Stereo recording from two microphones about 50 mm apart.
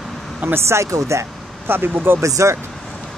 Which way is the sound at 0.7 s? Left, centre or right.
Right.